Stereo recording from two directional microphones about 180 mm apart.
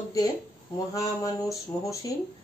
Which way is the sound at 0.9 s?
15° left (ahead or behind).